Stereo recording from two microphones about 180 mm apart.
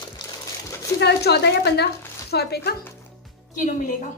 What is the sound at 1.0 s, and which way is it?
A woman's voice, 65° left (ahead or behind).